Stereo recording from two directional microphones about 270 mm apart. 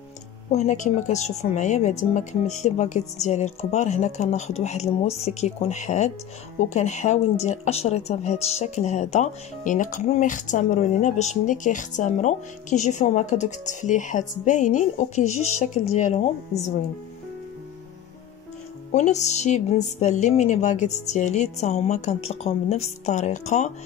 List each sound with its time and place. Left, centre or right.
0.5 s speech: left
18.9 s speech: left